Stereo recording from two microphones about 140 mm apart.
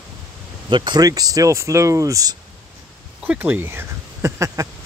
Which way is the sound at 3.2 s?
10° right (ahead or behind).